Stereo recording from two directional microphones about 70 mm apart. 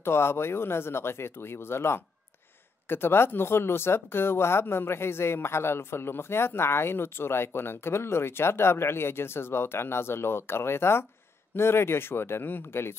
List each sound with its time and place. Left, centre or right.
0.0 s speech: left